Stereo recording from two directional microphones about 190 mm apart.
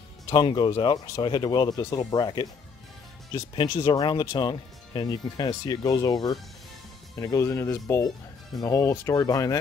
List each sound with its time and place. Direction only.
0.3 s speech: 25° left (ahead or behind)